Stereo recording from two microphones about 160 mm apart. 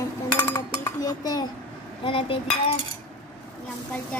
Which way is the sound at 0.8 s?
25° left (ahead or behind).